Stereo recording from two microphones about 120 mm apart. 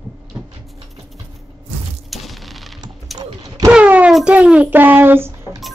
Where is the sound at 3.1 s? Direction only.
30° right (ahead or behind).